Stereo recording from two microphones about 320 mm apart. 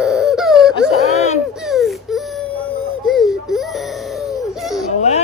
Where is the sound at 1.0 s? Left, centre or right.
Left.